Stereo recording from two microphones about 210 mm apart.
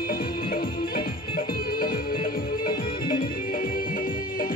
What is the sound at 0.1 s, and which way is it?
Music, 45° left (ahead or behind).